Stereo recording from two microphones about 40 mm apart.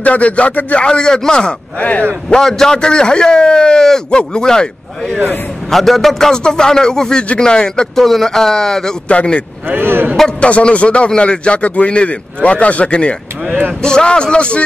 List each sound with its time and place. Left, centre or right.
0.0 s speech: left
0.8 s a man's voice: centre
5.7 s a man's voice: centre
7.9 s a man's voice: centre
9.1 s a man's voice: left
9.7 s speech: right
10.4 s a man's voice: left
13.5 s speech: right
13.8 s a man's voice: left